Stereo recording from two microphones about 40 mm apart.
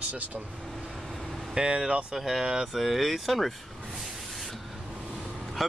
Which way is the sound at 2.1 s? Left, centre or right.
Centre.